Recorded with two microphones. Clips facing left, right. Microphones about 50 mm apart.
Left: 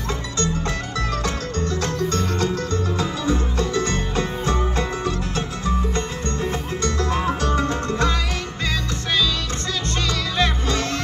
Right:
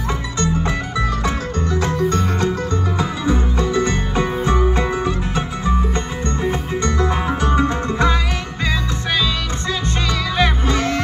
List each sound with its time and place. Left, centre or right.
1.2 s music: centre
10.3 s music: centre